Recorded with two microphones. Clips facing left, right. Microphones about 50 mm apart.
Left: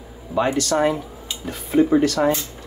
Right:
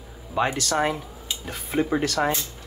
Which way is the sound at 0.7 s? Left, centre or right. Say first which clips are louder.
Left 4 dB; centre.